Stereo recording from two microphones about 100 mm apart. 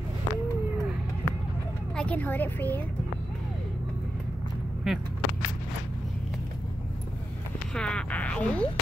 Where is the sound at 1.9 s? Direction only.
15° left (ahead or behind).